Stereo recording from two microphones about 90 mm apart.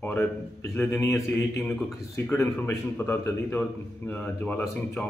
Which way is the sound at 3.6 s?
15° left (ahead or behind).